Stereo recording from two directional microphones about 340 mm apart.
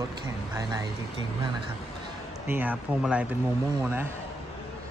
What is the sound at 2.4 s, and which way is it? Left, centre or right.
Speech, centre.